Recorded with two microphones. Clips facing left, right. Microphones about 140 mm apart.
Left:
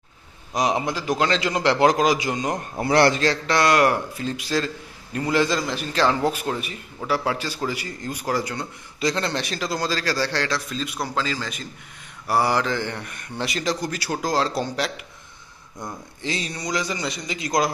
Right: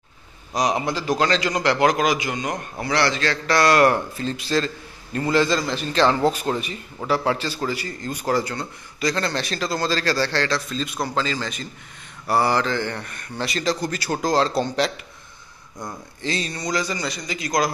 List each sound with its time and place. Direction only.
0.6 s a man's voice: 20° left (ahead or behind)
2.8 s a man's voice: 45° left (ahead or behind)
3.4 s a man's voice: 15° left (ahead or behind)
16.2 s a man's voice: 15° left (ahead or behind)